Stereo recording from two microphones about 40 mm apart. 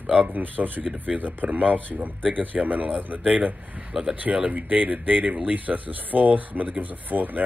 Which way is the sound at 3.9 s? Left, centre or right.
Centre.